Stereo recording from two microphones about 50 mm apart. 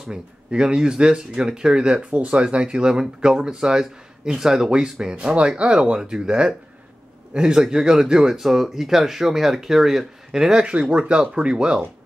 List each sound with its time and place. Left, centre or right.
0.1 s speech: centre
10.7 s speech: right